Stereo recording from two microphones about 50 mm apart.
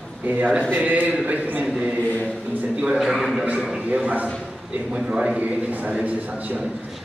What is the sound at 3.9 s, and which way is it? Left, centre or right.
Speech, right.